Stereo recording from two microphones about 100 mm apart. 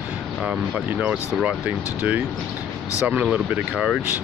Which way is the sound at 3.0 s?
15° right (ahead or behind).